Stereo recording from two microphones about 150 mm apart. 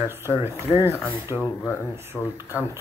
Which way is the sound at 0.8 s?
15° left (ahead or behind).